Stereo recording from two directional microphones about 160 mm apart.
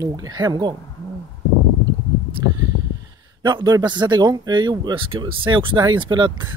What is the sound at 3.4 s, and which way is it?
Speech, 25° right (ahead or behind).